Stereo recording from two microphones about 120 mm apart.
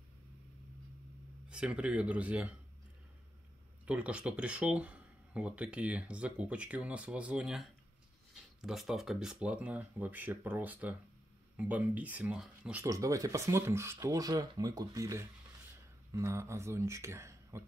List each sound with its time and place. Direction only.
1.5 s speech: 10° right (ahead or behind)
3.8 s speech: 10° right (ahead or behind)
12.8 s speech: 25° right (ahead or behind)